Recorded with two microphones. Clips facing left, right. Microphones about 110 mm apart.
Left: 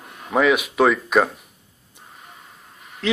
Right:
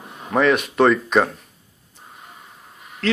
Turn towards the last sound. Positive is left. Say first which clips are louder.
# right 1 dB
turn(degrees=15)  # may be behind; listen again after turning